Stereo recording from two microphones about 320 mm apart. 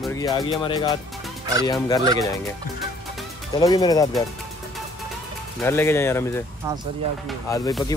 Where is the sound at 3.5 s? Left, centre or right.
Centre.